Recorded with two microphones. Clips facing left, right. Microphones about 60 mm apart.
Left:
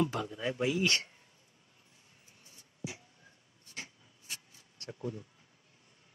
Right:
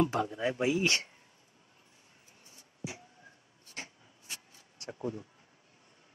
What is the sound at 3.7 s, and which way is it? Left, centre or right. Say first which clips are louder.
Rub: right 1 dB; right.